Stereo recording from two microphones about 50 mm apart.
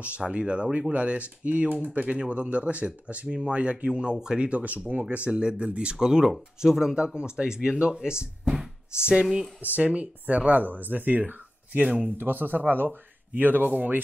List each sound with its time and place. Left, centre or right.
0.3 s speech: right
4.5 s speech: right; by 9.5 s centre
9.9 s speech: right
12.2 s speech: right